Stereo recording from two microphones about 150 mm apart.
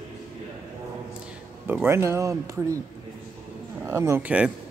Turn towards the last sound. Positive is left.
turn(degrees=-10)  # may be behind; listen again after turning